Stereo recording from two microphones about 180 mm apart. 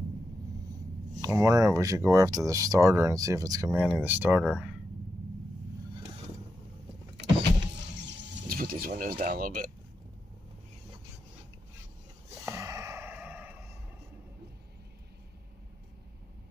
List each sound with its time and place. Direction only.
1.2 s speech: 20° right (ahead or behind)
8.5 s speech: 55° right (ahead or behind)
12.4 s sigh: 15° right (ahead or behind)